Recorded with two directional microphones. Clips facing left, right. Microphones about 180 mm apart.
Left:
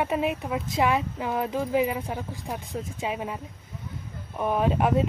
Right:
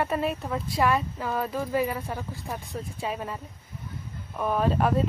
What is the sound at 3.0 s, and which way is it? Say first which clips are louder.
Speech: left 1 dB; 10° left (ahead or behind).